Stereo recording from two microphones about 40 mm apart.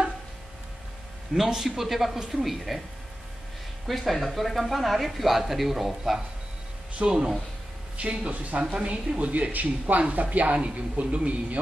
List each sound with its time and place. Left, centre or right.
1.3 s speech: centre
3.8 s speech: centre
7.1 s speech: right
8.7 s speech: right